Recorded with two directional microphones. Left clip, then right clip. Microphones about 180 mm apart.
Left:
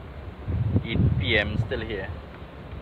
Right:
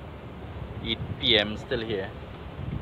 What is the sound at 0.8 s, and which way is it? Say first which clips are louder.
Speech: right 3 dB; 15° right (ahead or behind).